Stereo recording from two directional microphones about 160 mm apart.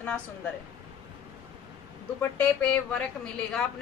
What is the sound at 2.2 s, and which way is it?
Speech, 10° left (ahead or behind).